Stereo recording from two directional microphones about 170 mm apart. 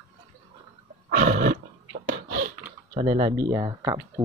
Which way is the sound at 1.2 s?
55° right (ahead or behind).